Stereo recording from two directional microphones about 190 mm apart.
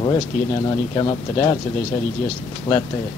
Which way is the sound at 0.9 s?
25° left (ahead or behind).